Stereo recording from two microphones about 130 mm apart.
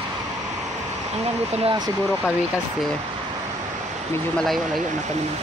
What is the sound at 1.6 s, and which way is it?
Speech, 35° right (ahead or behind).